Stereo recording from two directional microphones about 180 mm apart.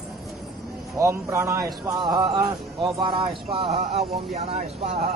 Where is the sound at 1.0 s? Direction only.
15° right (ahead or behind); by 4.1 s 35° right (ahead or behind).